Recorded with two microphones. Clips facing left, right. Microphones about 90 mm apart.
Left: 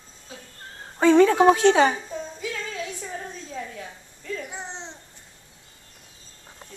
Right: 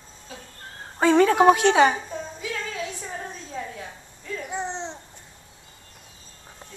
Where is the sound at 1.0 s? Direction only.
15° right (ahead or behind).